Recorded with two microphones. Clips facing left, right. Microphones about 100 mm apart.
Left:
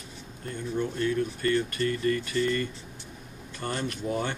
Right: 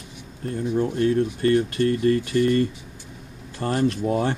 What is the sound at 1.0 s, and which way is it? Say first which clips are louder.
Speech: right 7 dB; 35° right (ahead or behind).